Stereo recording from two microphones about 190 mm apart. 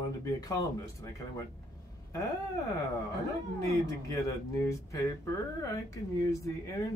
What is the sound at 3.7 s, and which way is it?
Speech, 15° left (ahead or behind).